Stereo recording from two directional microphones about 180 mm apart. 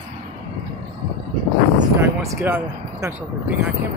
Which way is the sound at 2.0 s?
15° right (ahead or behind).